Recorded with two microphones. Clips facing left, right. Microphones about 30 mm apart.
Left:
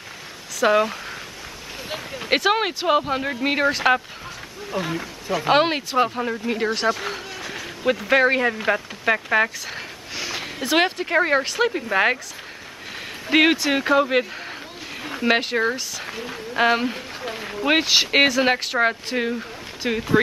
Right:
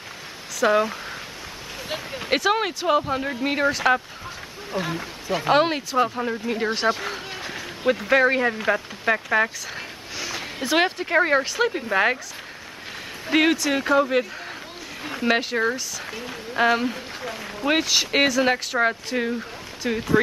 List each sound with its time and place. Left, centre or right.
0.7 s speech: centre
2.2 s speech: centre
4.7 s speech: centre
5.5 s speech: centre
7.5 s a sound: centre
8.1 s speech: centre
13.3 s speech: left
15.2 s speech: centre